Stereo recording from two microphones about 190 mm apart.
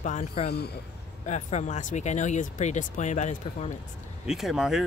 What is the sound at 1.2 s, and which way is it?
Speech, 40° left (ahead or behind).